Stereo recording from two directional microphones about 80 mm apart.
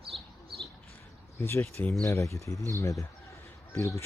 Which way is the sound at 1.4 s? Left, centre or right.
Left.